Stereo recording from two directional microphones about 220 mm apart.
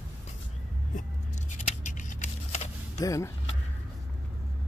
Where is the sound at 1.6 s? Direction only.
35° left (ahead or behind).